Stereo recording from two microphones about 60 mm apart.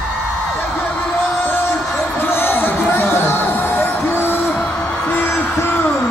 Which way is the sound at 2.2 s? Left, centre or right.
Left.